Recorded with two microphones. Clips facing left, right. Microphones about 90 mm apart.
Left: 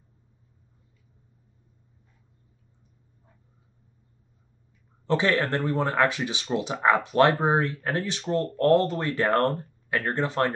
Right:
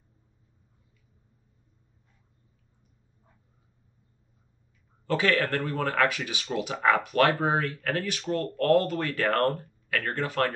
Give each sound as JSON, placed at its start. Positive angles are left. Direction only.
{"t": 5.0, "sound": "speech", "side_deg": 25}